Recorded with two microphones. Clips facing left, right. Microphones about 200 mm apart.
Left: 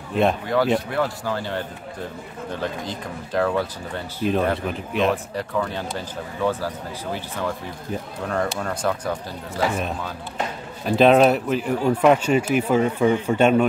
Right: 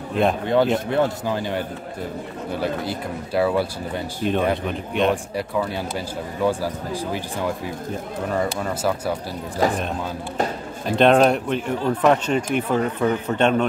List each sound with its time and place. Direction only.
0.1 s speech: centre (ahead or behind)
0.9 s a man's voice: 20° right (ahead or behind)
4.2 s speech: centre (ahead or behind)
5.1 s a man's voice: 10° right (ahead or behind)
10.9 s speech: 5° left (ahead or behind)